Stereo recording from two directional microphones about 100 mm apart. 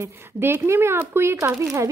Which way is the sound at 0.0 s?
25° right (ahead or behind).